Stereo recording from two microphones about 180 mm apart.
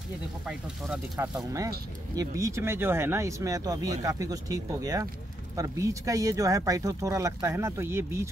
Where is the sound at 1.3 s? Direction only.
20° right (ahead or behind).